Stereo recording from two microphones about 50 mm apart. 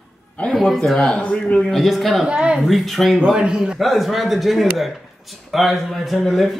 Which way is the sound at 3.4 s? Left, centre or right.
Centre.